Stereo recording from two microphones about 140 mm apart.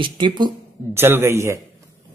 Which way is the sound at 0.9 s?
15° right (ahead or behind).